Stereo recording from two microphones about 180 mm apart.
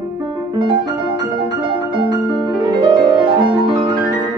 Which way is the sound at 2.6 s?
25° right (ahead or behind).